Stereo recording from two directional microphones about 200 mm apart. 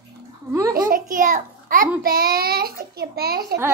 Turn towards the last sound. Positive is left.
turn(degrees=-50)  # may be behind; listen again after turning